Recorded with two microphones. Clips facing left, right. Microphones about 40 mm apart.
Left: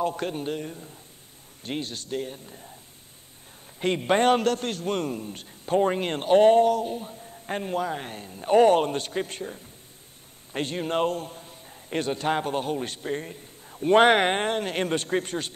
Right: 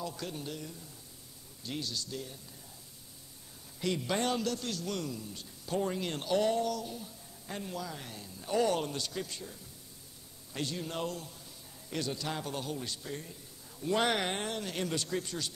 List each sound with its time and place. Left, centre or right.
0.0 s a man's voice: left
3.8 s a man's voice: left